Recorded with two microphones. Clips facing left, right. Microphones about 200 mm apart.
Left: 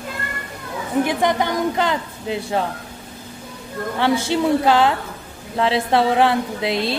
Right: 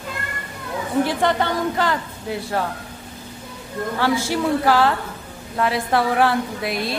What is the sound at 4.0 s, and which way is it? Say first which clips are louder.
A woman's voice: left 3 dB; 20° left (ahead or behind).